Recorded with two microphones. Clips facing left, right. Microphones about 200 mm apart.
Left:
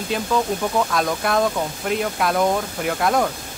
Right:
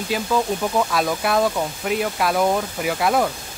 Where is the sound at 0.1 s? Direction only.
5° right (ahead or behind).